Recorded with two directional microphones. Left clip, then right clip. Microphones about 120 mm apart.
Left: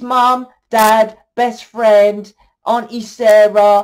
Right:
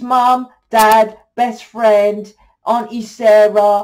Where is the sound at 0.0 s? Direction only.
35° left (ahead or behind).